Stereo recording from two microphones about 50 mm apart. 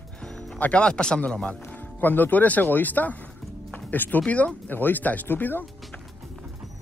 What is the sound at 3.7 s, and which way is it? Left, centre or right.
Music, left.